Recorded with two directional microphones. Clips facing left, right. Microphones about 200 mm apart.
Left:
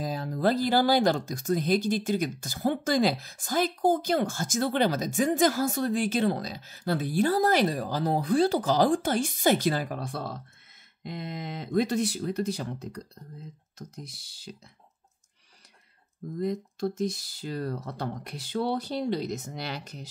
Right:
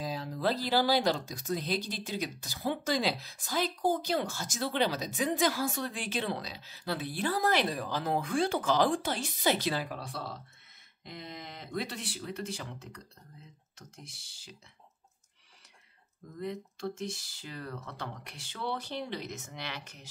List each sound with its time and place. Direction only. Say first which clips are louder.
0.0 s speech: left 5 dB; 50° left (ahead or behind)
11.7 s speech: left 12 dB; 45° left (ahead or behind)
16.3 s speech: left 8 dB; 40° left (ahead or behind)